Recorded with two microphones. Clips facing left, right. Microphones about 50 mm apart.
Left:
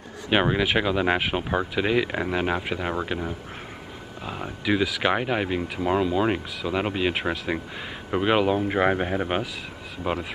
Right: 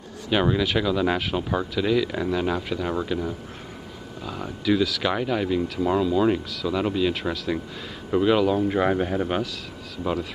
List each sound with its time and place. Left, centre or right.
0.3 s speech: left